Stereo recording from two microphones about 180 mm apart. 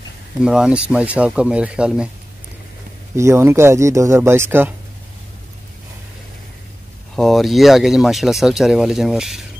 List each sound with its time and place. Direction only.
0.4 s speech: 5° right (ahead or behind)
3.2 s speech: 15° right (ahead or behind)
7.2 s speech: centre (ahead or behind)